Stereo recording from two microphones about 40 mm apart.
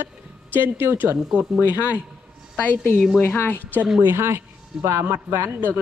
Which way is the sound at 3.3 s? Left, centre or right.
Left.